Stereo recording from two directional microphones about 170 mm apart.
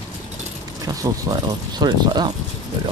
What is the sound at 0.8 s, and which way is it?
Speech, 20° right (ahead or behind).